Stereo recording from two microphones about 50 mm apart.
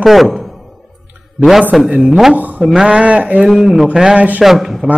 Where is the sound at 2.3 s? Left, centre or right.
Right.